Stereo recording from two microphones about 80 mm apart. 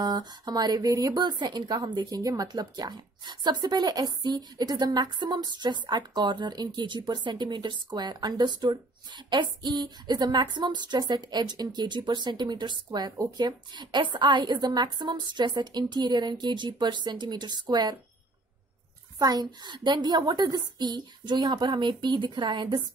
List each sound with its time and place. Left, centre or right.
0.0 s a woman's voice: right
19.1 s speech: right